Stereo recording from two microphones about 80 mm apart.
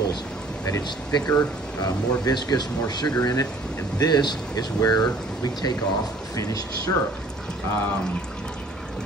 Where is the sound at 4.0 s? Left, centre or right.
Left.